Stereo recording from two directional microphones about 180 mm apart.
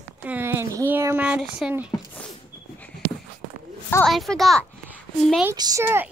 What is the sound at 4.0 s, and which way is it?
Speech, centre (ahead or behind).